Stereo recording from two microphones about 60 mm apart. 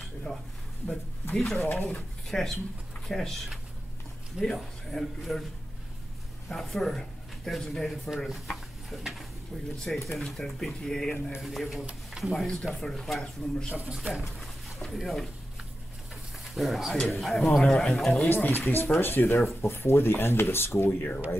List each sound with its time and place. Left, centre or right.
0.3 s speech: left
1.3 s speech: centre
4.4 s speech: centre
6.5 s speech: centre
13.7 s speech: right
14.9 s speech: centre
16.5 s speech: centre
18.3 s speech: left